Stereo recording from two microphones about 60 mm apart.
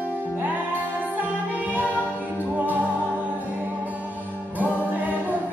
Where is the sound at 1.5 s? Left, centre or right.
Right.